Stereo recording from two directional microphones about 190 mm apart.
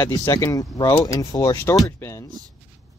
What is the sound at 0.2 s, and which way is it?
Speech, 20° left (ahead or behind).